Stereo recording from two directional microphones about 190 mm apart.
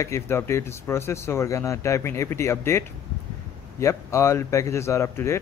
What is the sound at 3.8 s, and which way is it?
Speech, 15° left (ahead or behind).